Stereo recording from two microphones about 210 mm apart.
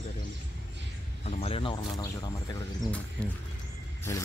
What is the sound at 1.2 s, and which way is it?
Speech, 30° left (ahead or behind).